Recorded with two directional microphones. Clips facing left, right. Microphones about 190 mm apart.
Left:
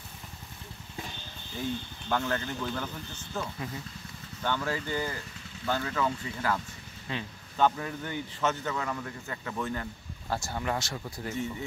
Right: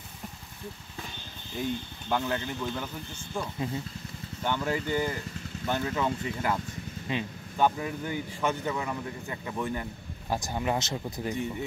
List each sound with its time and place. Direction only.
2.0 s speech: 15° right (ahead or behind)
3.5 s speech: 25° right (ahead or behind)